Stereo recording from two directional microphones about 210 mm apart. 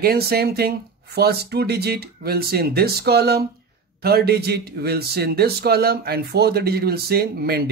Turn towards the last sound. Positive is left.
turn(degrees=-45)  # may be behind; listen again after turning